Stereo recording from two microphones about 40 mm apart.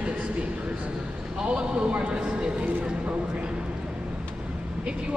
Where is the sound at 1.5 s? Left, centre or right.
Right.